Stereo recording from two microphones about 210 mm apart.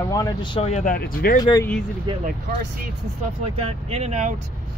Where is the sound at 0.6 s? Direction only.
35° left (ahead or behind).